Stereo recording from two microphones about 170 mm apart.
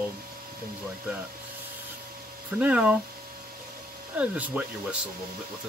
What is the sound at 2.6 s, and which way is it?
Speech, 10° right (ahead or behind).